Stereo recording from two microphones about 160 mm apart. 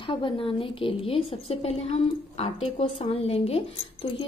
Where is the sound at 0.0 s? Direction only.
35° left (ahead or behind).